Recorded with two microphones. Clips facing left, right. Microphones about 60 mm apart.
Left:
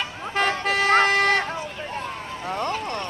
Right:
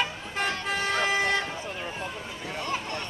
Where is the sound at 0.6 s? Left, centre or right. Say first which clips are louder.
Left 10 dB; left.